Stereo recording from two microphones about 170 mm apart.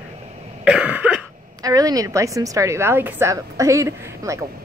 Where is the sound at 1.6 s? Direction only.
20° right (ahead or behind).